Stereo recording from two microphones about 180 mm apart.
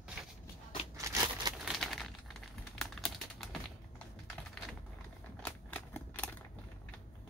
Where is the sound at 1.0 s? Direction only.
20° right (ahead or behind).